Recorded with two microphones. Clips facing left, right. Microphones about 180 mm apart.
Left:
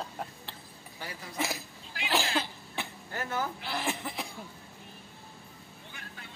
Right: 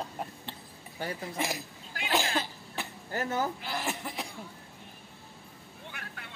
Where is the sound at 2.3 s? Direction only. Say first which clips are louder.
Even; centre (ahead or behind).